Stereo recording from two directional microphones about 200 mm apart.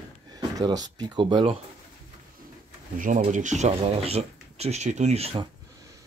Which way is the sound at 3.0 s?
40° right (ahead or behind).